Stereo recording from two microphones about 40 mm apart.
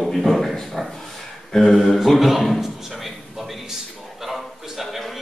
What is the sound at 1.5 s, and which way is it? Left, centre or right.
A man's voice, centre.